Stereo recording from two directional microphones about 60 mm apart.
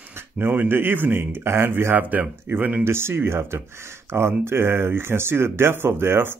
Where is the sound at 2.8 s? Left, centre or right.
Right.